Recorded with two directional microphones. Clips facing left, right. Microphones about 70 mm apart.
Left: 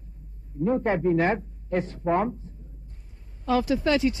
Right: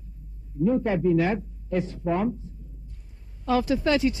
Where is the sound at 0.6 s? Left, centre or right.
Left.